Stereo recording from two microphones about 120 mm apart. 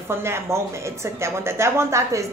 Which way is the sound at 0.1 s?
20° right (ahead or behind).